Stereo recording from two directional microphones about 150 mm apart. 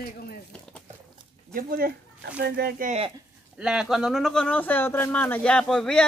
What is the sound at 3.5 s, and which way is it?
Speech, 5° right (ahead or behind).